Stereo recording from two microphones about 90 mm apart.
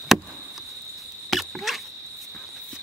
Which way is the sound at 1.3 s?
Centre (ahead or behind).